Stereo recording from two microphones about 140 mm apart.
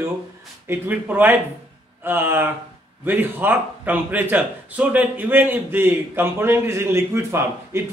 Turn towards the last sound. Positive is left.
turn(degrees=-20)  # may be behind; listen again after turning